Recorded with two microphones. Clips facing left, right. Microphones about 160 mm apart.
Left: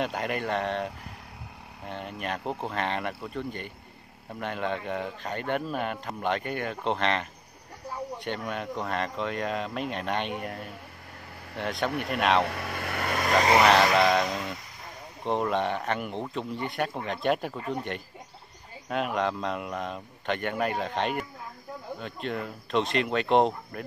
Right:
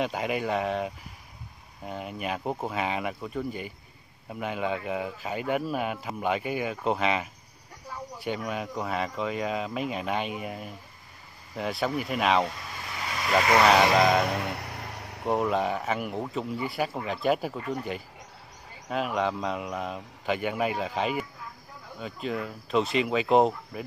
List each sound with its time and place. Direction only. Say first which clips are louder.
0.0 s a man's voice: right 1 dB; centre (ahead or behind)
12.4 s speech: left 5 dB; 65° left (ahead or behind); by 13.5 s 45° left (ahead or behind)
13.6 s a man's voice: right 2 dB; centre (ahead or behind)
14.3 s vehicle: right 3 dB; 65° right (ahead or behind)
15.2 s a man's voice: right 1 dB; 5° right (ahead or behind)
18.9 s a man's voice: even; centre (ahead or behind)